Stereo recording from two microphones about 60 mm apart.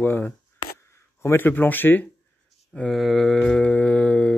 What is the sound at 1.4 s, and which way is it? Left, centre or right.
Speech, left.